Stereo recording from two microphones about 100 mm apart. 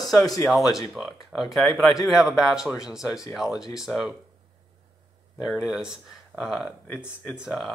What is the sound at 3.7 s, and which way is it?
Speech, 5° right (ahead or behind).